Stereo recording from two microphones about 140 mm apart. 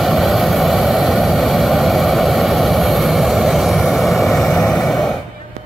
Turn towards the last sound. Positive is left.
turn(degrees=0)  # may be behind; listen again after turning